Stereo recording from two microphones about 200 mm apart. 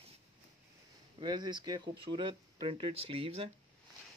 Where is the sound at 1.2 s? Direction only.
20° right (ahead or behind).